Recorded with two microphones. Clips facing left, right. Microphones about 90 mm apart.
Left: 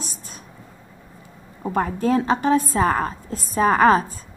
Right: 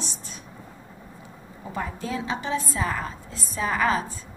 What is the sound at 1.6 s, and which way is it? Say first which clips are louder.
A woman's voice: left 10 dB; 50° left (ahead or behind).